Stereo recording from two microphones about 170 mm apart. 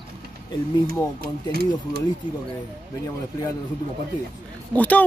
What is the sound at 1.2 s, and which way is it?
Speech, 65° right (ahead or behind).